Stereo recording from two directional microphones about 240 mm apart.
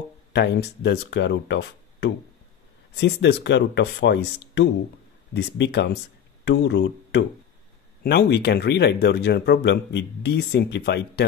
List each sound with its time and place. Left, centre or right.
0.3 s speech: left